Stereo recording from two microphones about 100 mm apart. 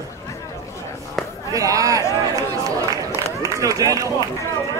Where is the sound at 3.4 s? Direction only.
35° right (ahead or behind).